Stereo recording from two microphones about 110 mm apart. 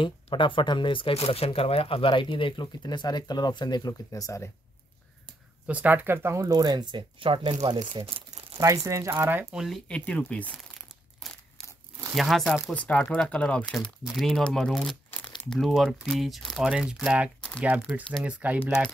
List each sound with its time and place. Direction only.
0.0 s speech: 50° left (ahead or behind); by 4.5 s 30° left (ahead or behind)
5.7 s speech: 15° right (ahead or behind); by 8.5 s 60° right (ahead or behind)
8.5 s speech: 30° right (ahead or behind)
9.5 s speech: 5° right (ahead or behind)
9.8 s speech: 10° left (ahead or behind)
11.2 s a sound: 5° left (ahead or behind)
12.2 s speech: centre (ahead or behind)
12.7 s speech: 15° left (ahead or behind); by 18.6 s 15° right (ahead or behind)